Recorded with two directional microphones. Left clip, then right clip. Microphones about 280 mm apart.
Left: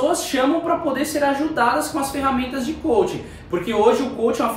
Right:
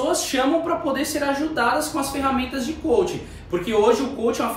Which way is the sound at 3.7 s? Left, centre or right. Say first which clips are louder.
Left 1 dB; centre.